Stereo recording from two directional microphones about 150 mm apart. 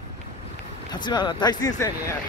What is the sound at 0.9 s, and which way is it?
Speech, 30° left (ahead or behind).